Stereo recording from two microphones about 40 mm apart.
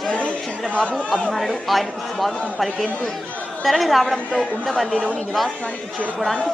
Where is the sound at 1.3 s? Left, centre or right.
Centre.